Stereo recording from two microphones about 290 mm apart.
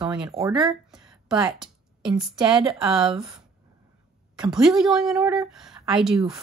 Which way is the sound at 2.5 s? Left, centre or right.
Centre.